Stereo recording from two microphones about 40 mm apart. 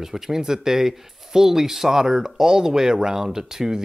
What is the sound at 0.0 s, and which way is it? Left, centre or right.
Speech, centre.